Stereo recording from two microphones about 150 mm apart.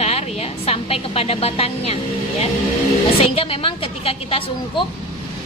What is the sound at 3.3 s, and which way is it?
A woman's voice, 40° left (ahead or behind).